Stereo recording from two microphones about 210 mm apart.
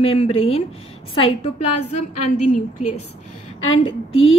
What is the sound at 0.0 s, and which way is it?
A woman's voice, 30° left (ahead or behind).